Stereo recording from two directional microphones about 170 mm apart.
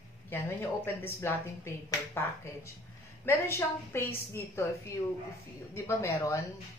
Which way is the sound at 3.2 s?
15° left (ahead or behind).